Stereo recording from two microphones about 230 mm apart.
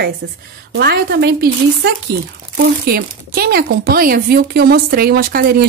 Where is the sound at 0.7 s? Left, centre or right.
Right.